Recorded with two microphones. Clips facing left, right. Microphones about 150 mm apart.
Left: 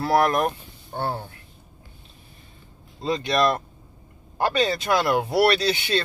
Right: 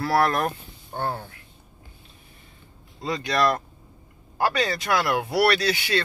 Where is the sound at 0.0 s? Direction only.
20° left (ahead or behind).